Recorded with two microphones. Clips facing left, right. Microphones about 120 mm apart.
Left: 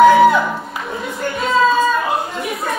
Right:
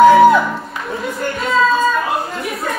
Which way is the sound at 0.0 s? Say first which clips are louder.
Right 2 dB; centre (ahead or behind).